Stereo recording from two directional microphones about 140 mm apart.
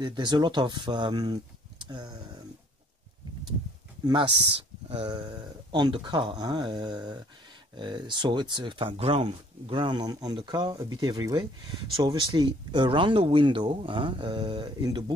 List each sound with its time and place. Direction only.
0.0 s speech: 30° right (ahead or behind)
4.0 s speech: 35° right (ahead or behind)